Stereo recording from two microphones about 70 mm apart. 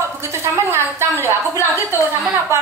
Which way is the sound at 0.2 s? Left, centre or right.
Right.